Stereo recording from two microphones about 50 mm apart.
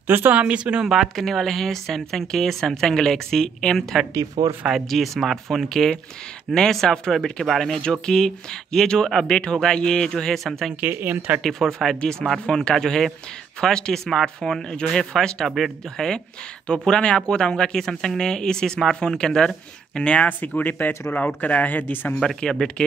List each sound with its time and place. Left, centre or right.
0.0 s speech: right
0.3 s speech: right
0.8 s speech: centre
4.1 s speech: right
4.8 s speech: centre
7.8 s speech: centre
10.8 s speech: right
11.4 s speech: centre
15.4 s speech: centre
16.6 s speech: centre
20.2 s speech: left
22.2 s speech: centre